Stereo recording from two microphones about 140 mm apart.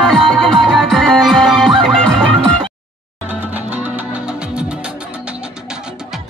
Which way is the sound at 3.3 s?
10° right (ahead or behind).